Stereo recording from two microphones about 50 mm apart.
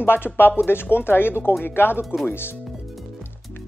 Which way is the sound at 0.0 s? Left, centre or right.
Left.